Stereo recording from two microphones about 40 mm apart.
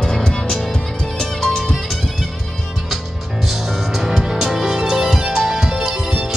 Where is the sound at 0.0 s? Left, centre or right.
Centre.